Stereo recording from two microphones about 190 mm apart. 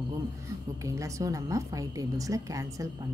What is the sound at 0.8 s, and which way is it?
A woman's voice, 15° right (ahead or behind).